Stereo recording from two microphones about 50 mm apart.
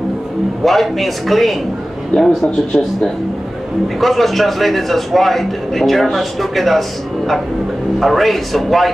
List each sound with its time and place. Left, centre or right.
0.7 s a man's voice: centre
8.0 s a man's voice: centre